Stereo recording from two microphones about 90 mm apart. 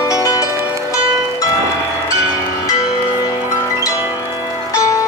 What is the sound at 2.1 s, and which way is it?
Music, 35° left (ahead or behind).